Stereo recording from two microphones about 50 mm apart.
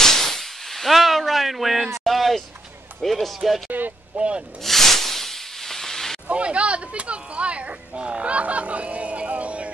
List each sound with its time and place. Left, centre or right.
0.0 s a sound: centre
3.0 s speech: centre
4.1 s speech: right
4.6 s hiss: centre
6.2 s speech: right